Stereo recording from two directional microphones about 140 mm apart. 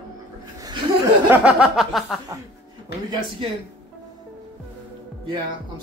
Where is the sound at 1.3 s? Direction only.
10° right (ahead or behind).